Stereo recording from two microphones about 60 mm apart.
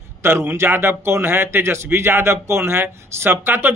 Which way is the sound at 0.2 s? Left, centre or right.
Right.